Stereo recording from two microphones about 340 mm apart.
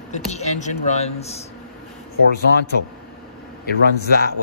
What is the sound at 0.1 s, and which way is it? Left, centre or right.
Speech, centre.